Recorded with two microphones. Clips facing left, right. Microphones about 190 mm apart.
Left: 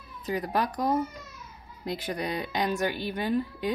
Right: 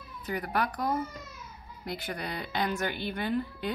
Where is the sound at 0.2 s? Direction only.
20° left (ahead or behind).